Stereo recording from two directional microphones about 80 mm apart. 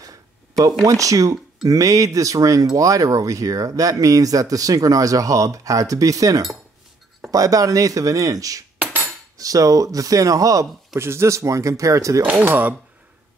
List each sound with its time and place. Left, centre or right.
0.8 s speech: right
11.0 s speech: right
12.3 s speech: right